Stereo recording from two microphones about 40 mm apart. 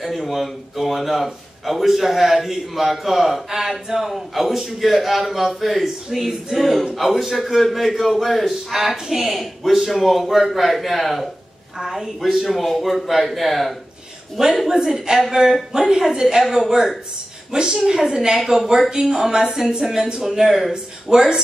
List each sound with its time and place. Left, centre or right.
0.0 s a man's voice: centre
3.4 s a man's voice: centre
9.4 s a man's voice: centre
11.8 s a man's voice: centre
14.7 s speech: centre
16.4 s a man's voice: centre
17.5 s a woman's voice: centre
19.7 s speech: right
20.2 s speech: centre